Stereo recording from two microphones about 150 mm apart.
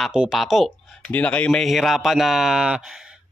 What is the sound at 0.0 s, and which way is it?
Speech, 5° right (ahead or behind).